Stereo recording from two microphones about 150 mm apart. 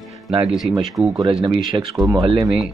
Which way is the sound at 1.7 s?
25° right (ahead or behind).